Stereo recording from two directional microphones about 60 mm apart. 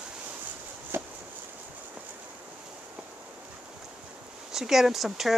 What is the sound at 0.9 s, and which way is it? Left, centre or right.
Chop, right.